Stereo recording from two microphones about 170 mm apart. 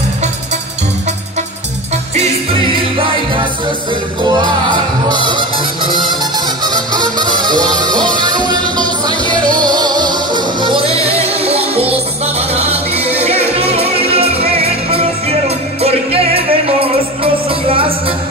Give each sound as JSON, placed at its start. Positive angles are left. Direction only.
{"t": 4.2, "sound": "music", "side_deg": -25}